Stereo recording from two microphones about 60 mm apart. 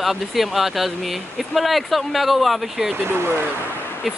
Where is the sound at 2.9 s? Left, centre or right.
Right.